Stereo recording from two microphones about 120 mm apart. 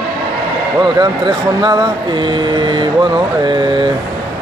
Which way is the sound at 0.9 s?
35° right (ahead or behind).